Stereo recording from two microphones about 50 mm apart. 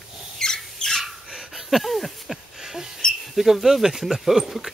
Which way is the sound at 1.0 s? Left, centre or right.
Centre.